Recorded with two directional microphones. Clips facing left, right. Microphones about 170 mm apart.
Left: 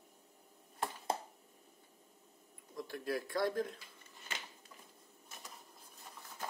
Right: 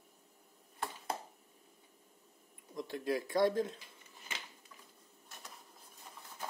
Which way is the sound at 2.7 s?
20° right (ahead or behind).